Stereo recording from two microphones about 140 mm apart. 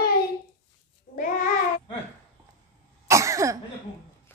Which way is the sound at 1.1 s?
70° left (ahead or behind).